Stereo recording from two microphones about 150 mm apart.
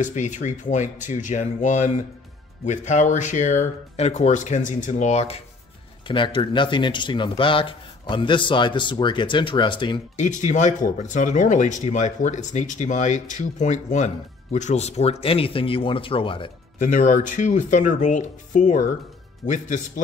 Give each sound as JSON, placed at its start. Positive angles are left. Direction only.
{"t": 0.0, "sound": "speech", "side_deg": 55}
{"t": 6.0, "sound": "speech", "side_deg": 35}
{"t": 10.1, "sound": "speech", "side_deg": 55}
{"t": 16.7, "sound": "speech", "side_deg": 60}